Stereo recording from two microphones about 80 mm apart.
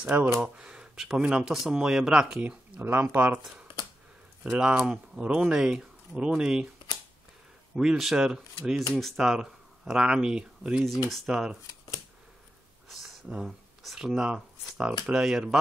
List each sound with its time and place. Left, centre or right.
0.0 s speech: centre
2.8 s speech: right
4.4 s speech: centre
7.7 s speech: centre
11.1 s speech: centre
12.8 s a sound: centre
13.4 s speech: centre